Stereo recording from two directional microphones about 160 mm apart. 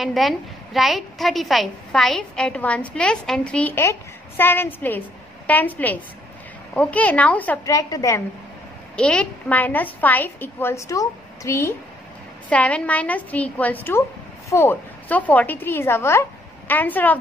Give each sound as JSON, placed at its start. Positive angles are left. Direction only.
{"t": 0.0, "sound": "a woman's voice", "side_deg": 0}
{"t": 7.6, "sound": "a woman's voice", "side_deg": 20}
{"t": 8.9, "sound": "a woman's voice", "side_deg": 5}